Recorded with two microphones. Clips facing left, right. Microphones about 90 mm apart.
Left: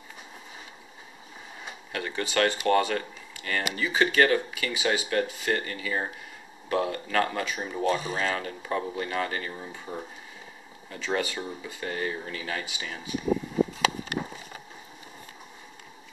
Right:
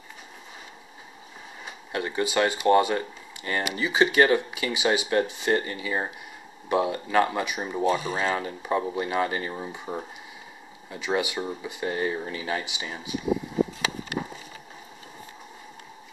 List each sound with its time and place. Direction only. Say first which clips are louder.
1.9 s speech: right 5 dB; 20° right (ahead or behind)